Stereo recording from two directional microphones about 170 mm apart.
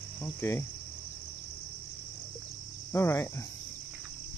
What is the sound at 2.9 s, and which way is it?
Speech, 15° left (ahead or behind).